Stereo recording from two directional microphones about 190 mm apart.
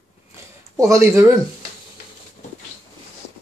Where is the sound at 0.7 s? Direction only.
15° right (ahead or behind).